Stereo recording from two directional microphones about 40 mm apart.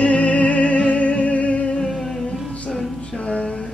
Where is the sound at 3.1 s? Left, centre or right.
Left.